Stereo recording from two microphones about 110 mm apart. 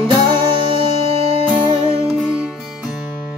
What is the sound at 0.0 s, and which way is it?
Music, 45° right (ahead or behind).